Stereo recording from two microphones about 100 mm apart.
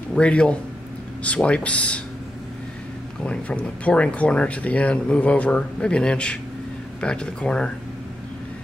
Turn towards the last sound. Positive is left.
turn(degrees=10)  # may be behind; listen again after turning